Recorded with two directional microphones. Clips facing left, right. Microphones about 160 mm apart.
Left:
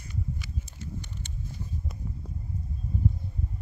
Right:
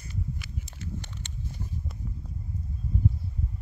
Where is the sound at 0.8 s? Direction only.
75° right (ahead or behind).